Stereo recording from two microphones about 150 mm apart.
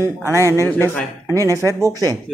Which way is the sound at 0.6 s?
10° left (ahead or behind).